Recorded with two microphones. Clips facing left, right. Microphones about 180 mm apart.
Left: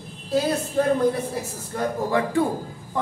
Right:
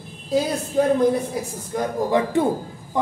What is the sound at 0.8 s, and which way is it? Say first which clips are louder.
A man's voice: right 4 dB; 15° right (ahead or behind).